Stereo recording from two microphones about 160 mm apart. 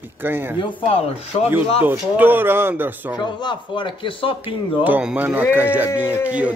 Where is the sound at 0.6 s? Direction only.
30° left (ahead or behind).